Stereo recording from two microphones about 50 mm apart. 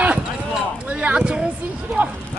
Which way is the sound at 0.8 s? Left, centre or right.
Right.